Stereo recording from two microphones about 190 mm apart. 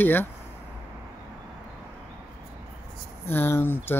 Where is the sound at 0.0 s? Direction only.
10° left (ahead or behind).